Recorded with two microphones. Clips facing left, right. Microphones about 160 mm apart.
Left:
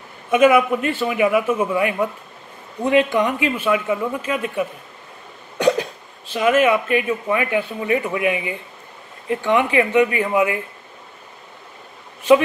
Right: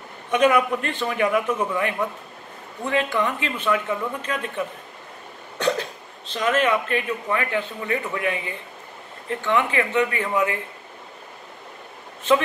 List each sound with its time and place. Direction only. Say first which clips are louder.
0.3 s speech: left 5 dB; 10° left (ahead or behind)
12.2 s speech: left 6 dB; 10° left (ahead or behind)